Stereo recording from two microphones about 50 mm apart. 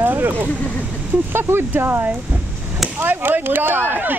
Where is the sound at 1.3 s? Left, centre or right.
Right.